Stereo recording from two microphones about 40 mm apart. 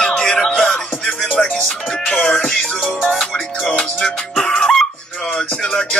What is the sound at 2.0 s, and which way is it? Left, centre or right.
Music, centre.